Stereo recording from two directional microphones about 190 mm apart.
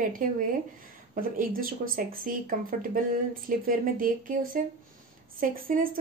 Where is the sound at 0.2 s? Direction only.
45° right (ahead or behind).